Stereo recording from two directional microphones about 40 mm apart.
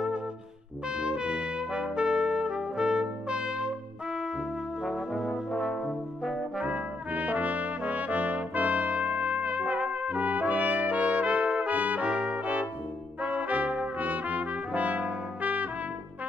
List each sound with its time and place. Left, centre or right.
0.8 s trumpet: right
4.8 s brass instrument: centre
6.6 s trumpet: right
12.1 s brass instrument: right
13.2 s trumpet: right